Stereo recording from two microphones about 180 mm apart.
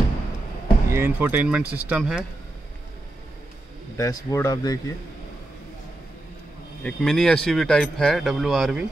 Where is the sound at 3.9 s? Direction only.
20° left (ahead or behind).